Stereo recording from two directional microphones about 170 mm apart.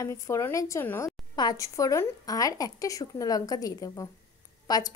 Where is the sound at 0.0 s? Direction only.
15° left (ahead or behind).